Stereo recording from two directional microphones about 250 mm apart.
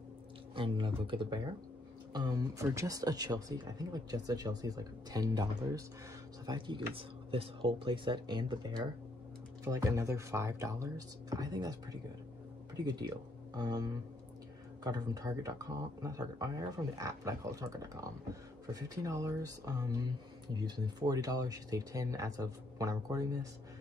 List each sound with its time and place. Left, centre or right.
0.6 s speech: centre